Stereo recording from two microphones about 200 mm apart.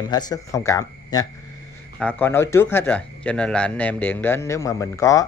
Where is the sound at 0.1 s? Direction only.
15° left (ahead or behind).